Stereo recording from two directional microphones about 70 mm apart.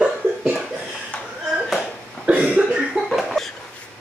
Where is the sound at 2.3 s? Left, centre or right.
Centre.